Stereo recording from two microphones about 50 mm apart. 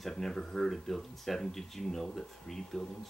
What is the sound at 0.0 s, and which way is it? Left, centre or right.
Speech, centre.